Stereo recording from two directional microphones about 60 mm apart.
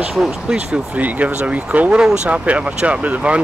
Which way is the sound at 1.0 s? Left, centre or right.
Right.